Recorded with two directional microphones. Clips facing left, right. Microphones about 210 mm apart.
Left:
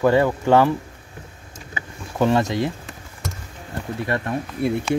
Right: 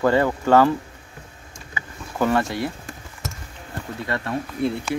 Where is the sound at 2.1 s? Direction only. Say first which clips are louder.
Left 2 dB; 20° left (ahead or behind).